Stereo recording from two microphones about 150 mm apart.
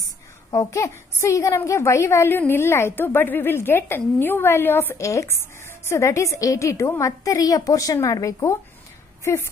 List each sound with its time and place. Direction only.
0.5 s a woman's voice: 20° left (ahead or behind)